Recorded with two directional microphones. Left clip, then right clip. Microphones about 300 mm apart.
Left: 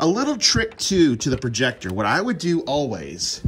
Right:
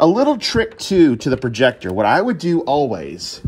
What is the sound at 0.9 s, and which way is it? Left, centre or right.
Speech, left.